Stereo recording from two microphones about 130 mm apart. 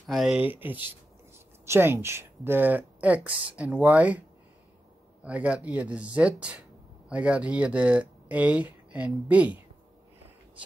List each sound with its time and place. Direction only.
0.0 s speech: centre (ahead or behind)
0.4 s speech: 15° right (ahead or behind)
5.2 s speech: 10° right (ahead or behind)